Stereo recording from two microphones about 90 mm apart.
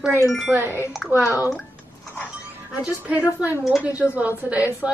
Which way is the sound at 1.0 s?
Centre (ahead or behind).